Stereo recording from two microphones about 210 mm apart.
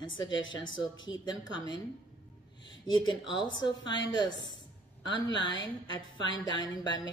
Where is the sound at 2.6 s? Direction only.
65° left (ahead or behind).